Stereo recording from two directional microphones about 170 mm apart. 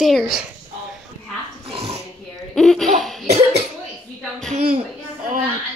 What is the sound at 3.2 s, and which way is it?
Cough, 40° right (ahead or behind).